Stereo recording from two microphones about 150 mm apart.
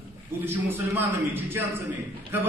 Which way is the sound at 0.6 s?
15° right (ahead or behind).